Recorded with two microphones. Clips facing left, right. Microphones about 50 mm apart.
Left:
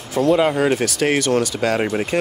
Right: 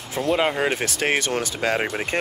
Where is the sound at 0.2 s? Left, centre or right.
Centre.